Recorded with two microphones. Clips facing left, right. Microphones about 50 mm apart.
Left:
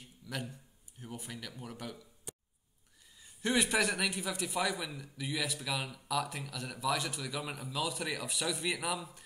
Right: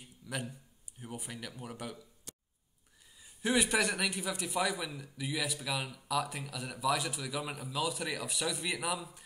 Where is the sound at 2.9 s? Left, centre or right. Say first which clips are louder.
Even; centre.